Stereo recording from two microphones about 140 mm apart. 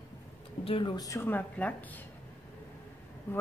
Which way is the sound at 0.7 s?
35° left (ahead or behind).